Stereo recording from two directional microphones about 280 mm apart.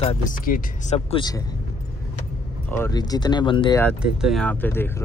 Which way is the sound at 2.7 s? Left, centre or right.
Centre.